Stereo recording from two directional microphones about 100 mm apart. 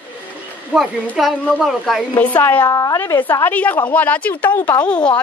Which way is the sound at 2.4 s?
20° left (ahead or behind).